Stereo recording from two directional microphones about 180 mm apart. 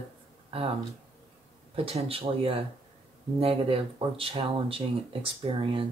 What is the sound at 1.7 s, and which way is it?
Speech, 30° right (ahead or behind).